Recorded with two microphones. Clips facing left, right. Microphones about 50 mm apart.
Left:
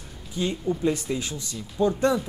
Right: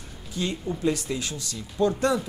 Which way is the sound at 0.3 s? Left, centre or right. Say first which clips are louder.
Left 3 dB; centre.